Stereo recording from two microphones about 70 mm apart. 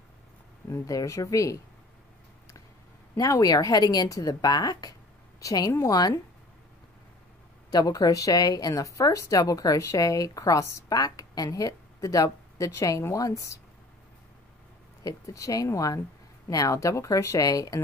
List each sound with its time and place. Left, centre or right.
0.7 s speech: left
3.2 s speech: left
5.4 s speech: left
7.7 s speech: left
10.9 s speech: left
15.0 s speech: left